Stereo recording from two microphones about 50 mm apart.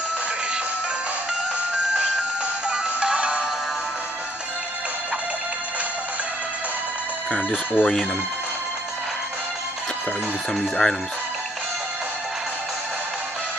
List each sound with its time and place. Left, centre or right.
2.7 s music: right
7.2 s speech: left
7.8 s speech: centre
10.5 s speech: centre